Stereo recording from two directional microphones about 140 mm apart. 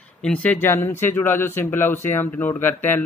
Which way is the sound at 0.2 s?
10° left (ahead or behind).